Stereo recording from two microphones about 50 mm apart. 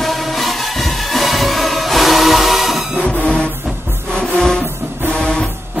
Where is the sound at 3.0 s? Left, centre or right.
Centre.